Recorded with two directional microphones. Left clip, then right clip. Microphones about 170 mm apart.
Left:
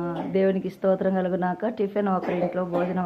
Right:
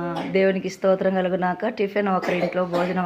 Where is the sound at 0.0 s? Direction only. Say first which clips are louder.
Right 3 dB; 10° right (ahead or behind).